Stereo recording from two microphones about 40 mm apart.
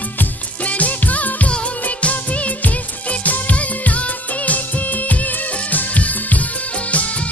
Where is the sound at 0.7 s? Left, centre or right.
Left.